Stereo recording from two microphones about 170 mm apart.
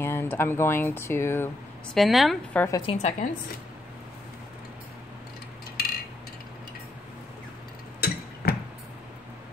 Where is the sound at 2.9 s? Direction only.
45° left (ahead or behind).